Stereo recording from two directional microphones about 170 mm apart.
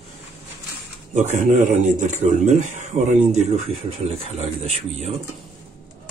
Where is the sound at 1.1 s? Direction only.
45° right (ahead or behind).